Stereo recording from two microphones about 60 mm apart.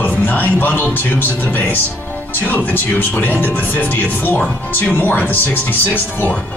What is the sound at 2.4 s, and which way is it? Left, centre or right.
Music, left.